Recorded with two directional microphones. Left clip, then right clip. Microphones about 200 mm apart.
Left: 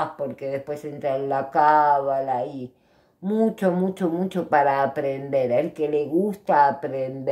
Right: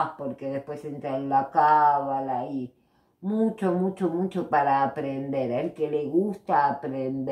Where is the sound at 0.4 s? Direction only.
40° left (ahead or behind).